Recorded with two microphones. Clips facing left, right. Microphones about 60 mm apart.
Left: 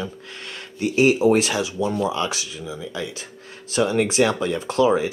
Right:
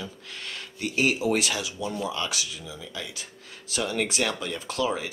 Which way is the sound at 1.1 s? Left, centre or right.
Left.